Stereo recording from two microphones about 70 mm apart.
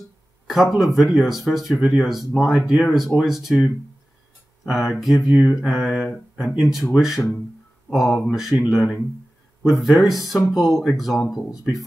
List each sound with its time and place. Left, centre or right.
0.5 s speech: centre
5.6 s a sound: centre
6.3 s speech: centre